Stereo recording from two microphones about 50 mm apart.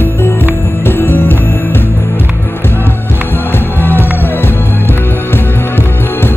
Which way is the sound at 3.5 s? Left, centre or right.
Left.